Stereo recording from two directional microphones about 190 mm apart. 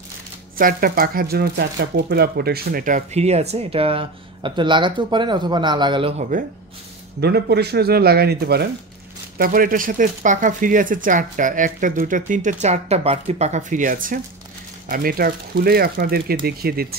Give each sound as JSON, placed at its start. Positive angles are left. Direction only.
{"t": 0.6, "sound": "speech", "side_deg": -50}
{"t": 7.2, "sound": "speech", "side_deg": -60}